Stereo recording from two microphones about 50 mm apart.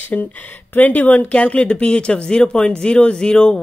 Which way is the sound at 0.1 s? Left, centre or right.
Left.